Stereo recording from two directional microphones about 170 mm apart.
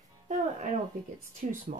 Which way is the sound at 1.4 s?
50° right (ahead or behind).